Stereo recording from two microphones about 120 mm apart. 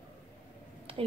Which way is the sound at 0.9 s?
50° right (ahead or behind).